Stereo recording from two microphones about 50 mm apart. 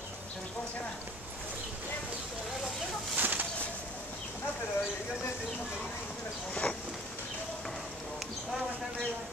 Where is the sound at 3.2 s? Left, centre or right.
Right.